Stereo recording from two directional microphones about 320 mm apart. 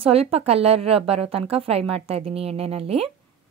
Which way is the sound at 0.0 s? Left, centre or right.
Centre.